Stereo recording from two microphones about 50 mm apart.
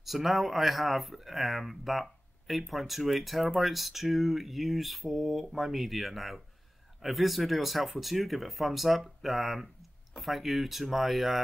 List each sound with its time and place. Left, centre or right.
0.0 s speech: centre